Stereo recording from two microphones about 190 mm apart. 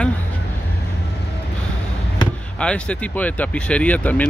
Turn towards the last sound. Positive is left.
turn(degrees=10)  # may be behind; listen again after turning